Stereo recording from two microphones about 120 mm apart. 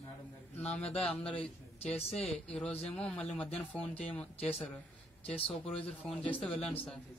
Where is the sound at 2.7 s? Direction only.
55° left (ahead or behind).